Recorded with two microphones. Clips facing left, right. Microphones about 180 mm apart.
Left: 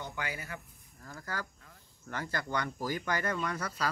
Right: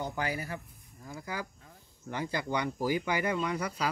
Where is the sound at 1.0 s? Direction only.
15° right (ahead or behind).